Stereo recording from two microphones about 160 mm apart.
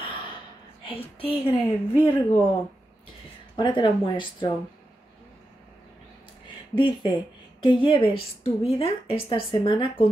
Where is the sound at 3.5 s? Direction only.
30° left (ahead or behind).